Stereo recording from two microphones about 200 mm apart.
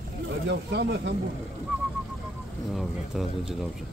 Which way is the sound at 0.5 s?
55° right (ahead or behind).